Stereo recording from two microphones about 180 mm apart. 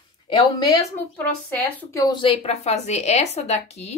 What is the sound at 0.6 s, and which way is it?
A woman's voice, 20° left (ahead or behind).